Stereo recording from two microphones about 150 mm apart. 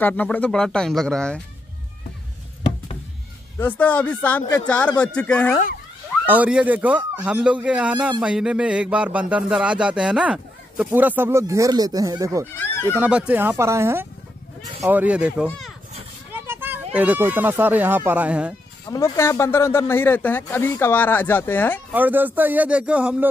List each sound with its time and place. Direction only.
0.0 s speech: 10° left (ahead or behind)
3.5 s speech: 10° left (ahead or behind)
6.2 s speech: 10° right (ahead or behind)
12.5 s speech: 15° left (ahead or behind)
12.9 s speech: 10° right (ahead or behind)
18.9 s speech: 20° left (ahead or behind)
21.9 s speech: 10° right (ahead or behind)